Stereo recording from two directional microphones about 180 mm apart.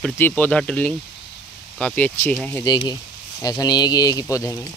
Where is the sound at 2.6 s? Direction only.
25° left (ahead or behind).